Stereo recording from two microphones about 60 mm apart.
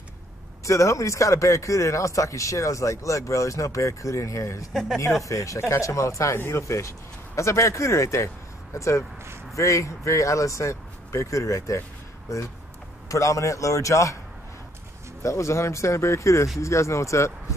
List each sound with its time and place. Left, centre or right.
0.7 s speech: left
6.3 s speech: left
13.1 s speech: left
15.2 s speech: left